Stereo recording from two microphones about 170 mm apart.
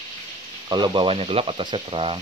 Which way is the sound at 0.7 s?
25° right (ahead or behind).